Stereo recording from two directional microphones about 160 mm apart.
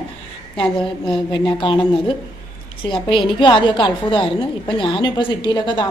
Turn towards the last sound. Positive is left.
turn(degrees=30)  # may be behind; listen again after turning